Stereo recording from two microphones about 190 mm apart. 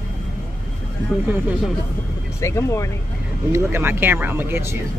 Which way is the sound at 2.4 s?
15° left (ahead or behind).